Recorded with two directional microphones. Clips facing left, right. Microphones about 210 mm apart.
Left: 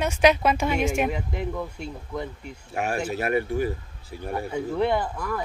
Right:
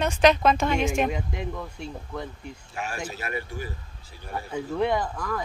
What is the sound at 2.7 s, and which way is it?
Speech, 55° left (ahead or behind).